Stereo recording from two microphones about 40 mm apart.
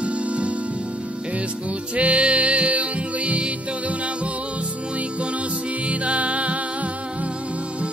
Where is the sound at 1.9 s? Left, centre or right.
Right.